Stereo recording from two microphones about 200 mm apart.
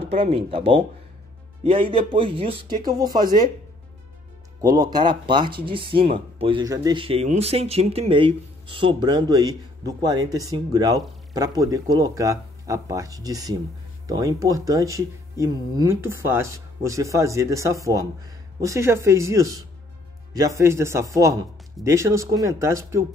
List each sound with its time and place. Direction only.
0.0 s speech: 30° right (ahead or behind)
4.6 s speech: 20° right (ahead or behind)